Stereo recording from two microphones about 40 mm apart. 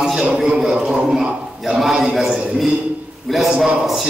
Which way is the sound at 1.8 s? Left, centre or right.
Centre.